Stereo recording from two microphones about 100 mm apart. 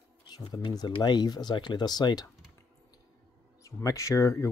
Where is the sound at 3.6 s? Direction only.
30° left (ahead or behind).